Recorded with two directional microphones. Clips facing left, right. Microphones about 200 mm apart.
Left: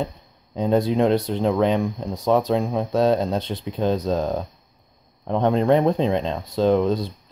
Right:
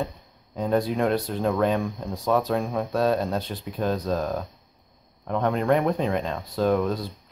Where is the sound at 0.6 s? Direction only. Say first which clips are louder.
Left 4 dB; 25° left (ahead or behind).